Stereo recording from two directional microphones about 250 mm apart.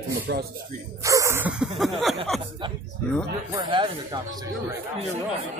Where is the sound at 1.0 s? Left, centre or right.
Centre.